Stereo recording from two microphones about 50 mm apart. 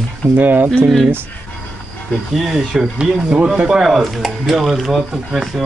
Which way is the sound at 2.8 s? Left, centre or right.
Centre.